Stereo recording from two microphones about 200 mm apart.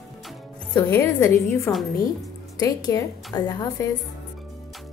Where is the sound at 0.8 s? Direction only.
15° left (ahead or behind).